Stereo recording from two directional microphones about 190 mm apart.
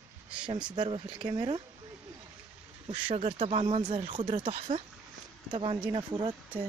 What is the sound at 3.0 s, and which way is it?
Speech, 30° right (ahead or behind).